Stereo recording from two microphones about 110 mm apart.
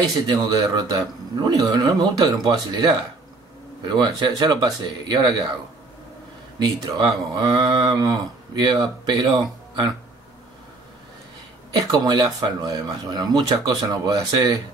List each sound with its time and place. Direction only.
0.0 s speech: 35° right (ahead or behind)
6.6 s speech: 35° right (ahead or behind)
11.7 s speech: 40° right (ahead or behind)